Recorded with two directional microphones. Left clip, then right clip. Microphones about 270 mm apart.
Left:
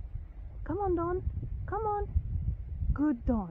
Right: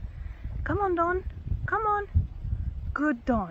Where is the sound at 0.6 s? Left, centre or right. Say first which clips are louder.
Right 6 dB; centre.